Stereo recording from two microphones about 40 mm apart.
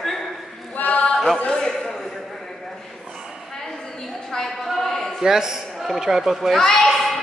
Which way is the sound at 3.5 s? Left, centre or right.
Centre.